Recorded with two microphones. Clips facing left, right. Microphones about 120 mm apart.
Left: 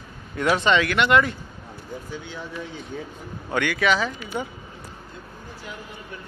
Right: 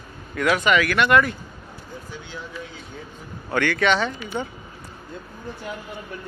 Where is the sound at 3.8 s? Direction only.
5° left (ahead or behind).